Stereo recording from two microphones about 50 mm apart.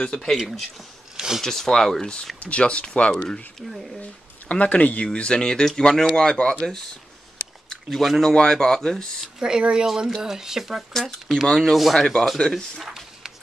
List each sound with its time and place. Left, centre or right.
0.0 s speech: centre
0.4 s speech: centre
1.1 s a sound: centre
1.4 s speech: centre
4.5 s speech: left
7.9 s speech: centre
9.4 s speech: centre
9.8 s speech: centre
10.9 s speech: centre
12.7 s a sound: centre